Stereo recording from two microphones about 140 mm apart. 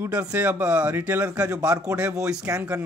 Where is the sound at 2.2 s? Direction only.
5° right (ahead or behind).